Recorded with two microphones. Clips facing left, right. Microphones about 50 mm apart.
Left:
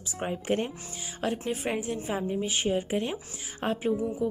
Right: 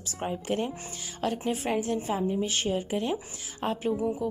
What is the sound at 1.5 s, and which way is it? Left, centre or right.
A woman's voice, centre.